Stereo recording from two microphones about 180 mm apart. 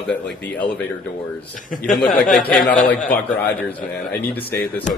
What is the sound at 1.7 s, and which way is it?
A man's voice, 45° left (ahead or behind).